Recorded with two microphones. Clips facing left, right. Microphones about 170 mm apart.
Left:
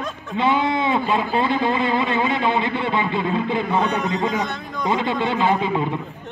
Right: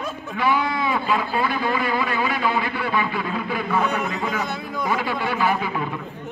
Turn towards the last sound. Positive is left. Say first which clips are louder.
# left 3 dB
turn(degrees=25)  # may be behind; listen again after turning